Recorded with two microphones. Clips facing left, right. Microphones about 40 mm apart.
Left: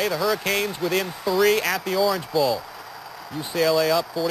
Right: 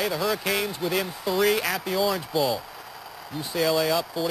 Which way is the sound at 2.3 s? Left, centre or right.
Right.